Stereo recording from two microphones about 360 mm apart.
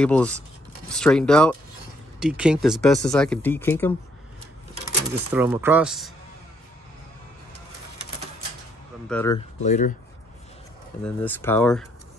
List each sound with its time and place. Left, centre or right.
0.0 s speech: centre
5.3 s speech: centre
9.1 s speech: centre
9.6 s speech: centre
11.1 s speech: centre